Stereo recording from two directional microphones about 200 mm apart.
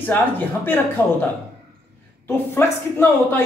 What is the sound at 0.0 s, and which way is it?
Speech, 10° left (ahead or behind).